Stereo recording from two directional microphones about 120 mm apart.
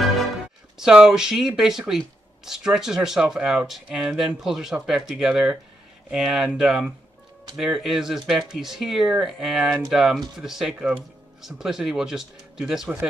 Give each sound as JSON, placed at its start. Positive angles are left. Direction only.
{"t": 0.7, "sound": "speech", "side_deg": -5}